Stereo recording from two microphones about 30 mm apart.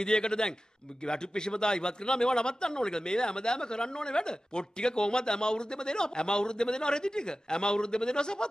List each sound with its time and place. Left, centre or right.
0.0 s a man's voice: left